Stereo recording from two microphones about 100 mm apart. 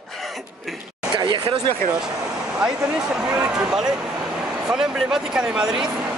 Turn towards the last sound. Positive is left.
turn(degrees=-5)  # may be behind; listen again after turning